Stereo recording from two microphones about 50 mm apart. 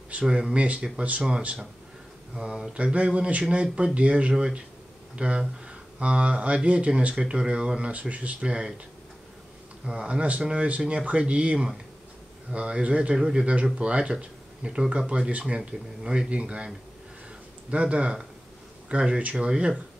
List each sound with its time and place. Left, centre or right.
0.1 s speech: right
2.3 s speech: centre
9.8 s speech: right